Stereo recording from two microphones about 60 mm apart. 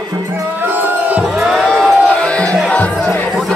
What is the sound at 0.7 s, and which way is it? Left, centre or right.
Music, right.